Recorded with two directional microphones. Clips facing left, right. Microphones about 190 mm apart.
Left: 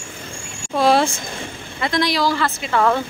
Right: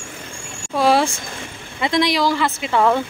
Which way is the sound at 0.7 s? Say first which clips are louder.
Even; 10° right (ahead or behind).